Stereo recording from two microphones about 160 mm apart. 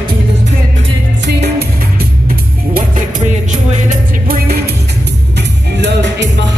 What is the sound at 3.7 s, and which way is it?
Music, 60° right (ahead or behind).